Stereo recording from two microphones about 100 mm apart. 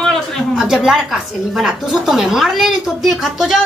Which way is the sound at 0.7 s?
5° right (ahead or behind).